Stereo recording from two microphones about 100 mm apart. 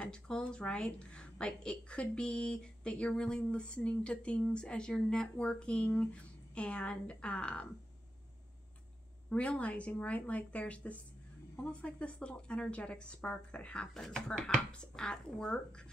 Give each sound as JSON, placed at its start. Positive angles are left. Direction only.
{"t": 0.0, "sound": "a woman's voice", "side_deg": 10}
{"t": 9.3, "sound": "a woman's voice", "side_deg": 15}